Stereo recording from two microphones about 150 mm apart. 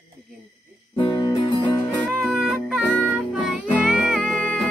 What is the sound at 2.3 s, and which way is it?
Music, 5° right (ahead or behind).